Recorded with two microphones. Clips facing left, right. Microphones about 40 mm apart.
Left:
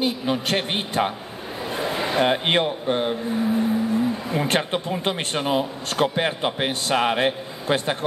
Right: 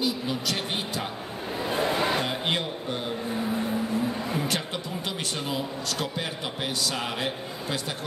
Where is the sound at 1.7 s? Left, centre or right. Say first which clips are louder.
Even; centre.